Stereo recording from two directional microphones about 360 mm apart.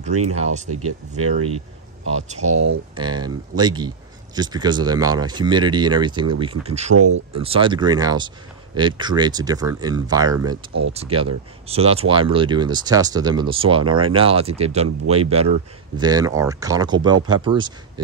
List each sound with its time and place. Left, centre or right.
0.3 s speech: centre
0.7 s speech: right
2.4 s speech: right
3.0 s speech: centre
7.0 s speech: right
7.3 s speech: centre